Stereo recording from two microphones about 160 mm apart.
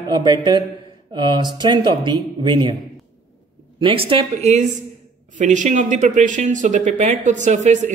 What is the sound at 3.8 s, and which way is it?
Speech, 35° right (ahead or behind).